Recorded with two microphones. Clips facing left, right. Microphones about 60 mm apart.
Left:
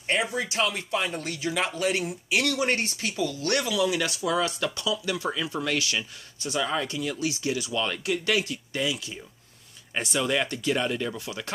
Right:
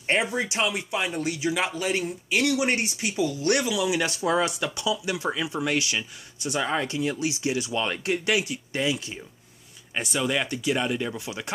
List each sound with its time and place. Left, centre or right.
0.0 s speech: right; by 2.4 s centre
2.4 s speech: centre
4.0 s speech: right
4.5 s speech: centre
6.6 s speech: right
8.3 s speech: centre
8.7 s speech: right
9.9 s speech: centre